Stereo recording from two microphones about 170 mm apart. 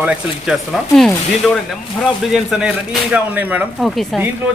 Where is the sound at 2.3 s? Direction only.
5° right (ahead or behind).